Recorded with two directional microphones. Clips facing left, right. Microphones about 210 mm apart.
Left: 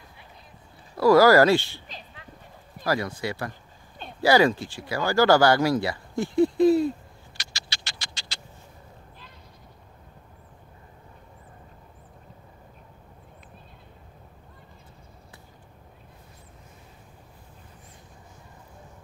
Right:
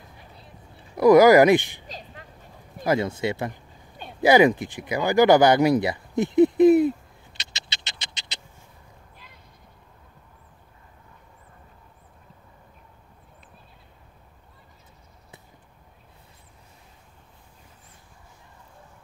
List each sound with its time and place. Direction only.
0.9 s speech: 20° right (ahead or behind)
2.8 s speech: 20° right (ahead or behind)
7.3 s a sound: 20° right (ahead or behind)